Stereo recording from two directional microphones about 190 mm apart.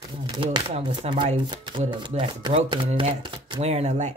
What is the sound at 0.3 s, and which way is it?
Speech, 25° right (ahead or behind).